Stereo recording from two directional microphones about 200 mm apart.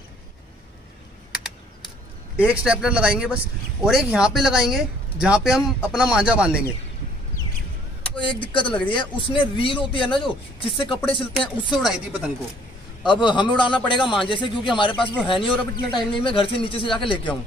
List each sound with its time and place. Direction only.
2.3 s speech: 5° right (ahead or behind)
8.2 s speech: 25° left (ahead or behind)
11.3 s speech: centre (ahead or behind)
13.0 s speech: 25° left (ahead or behind)